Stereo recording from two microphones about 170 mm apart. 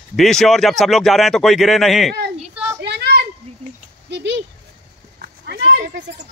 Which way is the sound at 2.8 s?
80° right.